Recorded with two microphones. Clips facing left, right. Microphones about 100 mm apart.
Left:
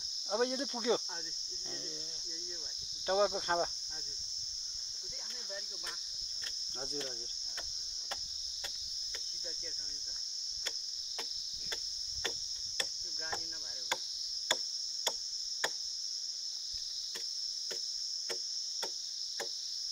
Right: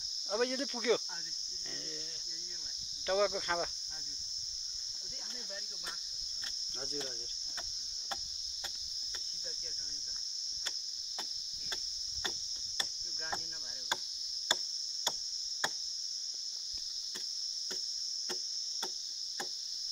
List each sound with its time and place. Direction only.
0.3 s cricket: 25° left (ahead or behind)
3.1 s cricket: 30° left (ahead or behind)